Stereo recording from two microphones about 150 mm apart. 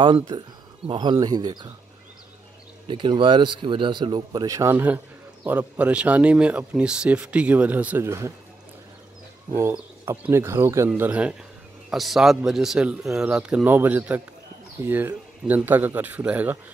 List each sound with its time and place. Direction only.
0.0 s speech: 30° right (ahead or behind)
2.9 s a man's voice: 35° right (ahead or behind); by 8.3 s 15° right (ahead or behind)
9.6 s a man's voice: 15° right (ahead or behind)